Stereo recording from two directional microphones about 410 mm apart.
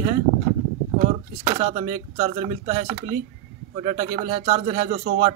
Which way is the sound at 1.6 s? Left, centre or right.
Centre.